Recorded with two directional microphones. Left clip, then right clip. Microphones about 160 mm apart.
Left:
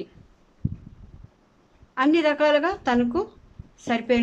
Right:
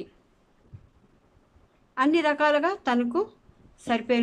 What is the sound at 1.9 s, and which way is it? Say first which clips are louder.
A woman's voice: left 2 dB; 15° right (ahead or behind).